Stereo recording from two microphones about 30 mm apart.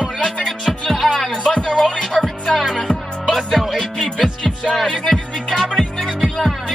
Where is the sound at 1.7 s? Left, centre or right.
Left.